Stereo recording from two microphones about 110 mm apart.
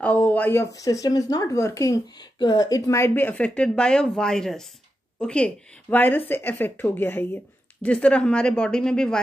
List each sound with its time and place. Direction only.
0.0 s speech: 15° left (ahead or behind)
0.7 s speech: 30° left (ahead or behind); by 9.2 s 5° left (ahead or behind)